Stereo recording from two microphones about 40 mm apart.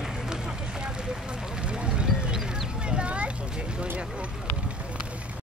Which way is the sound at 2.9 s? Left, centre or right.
Right.